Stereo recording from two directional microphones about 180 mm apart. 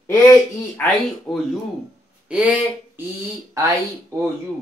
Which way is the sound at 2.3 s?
5° right (ahead or behind).